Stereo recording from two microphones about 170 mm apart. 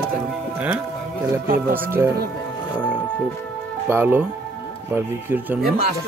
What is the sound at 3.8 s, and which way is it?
Speech, 15° right (ahead or behind).